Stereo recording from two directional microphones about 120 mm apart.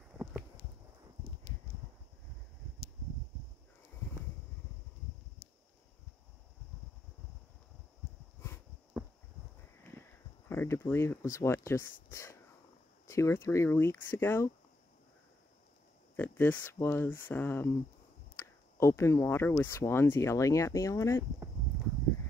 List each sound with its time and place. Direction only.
0.2 s a sound: 10° right (ahead or behind)
10.5 s speech: 20° left (ahead or behind)
16.2 s speech: 15° left (ahead or behind)